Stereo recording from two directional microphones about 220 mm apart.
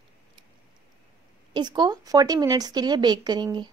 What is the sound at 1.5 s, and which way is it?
A woman's voice, 20° right (ahead or behind).